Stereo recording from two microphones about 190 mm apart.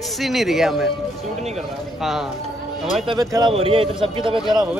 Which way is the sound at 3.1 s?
20° right (ahead or behind).